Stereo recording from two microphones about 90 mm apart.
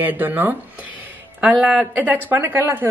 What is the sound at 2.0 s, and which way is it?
Speech, 20° right (ahead or behind).